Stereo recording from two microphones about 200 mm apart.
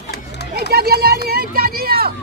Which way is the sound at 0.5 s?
50° right (ahead or behind).